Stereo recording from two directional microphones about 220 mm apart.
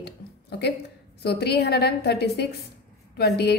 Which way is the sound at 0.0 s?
50° left (ahead or behind).